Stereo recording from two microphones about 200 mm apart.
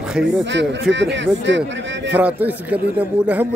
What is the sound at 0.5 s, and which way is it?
Speech, 65° right (ahead or behind).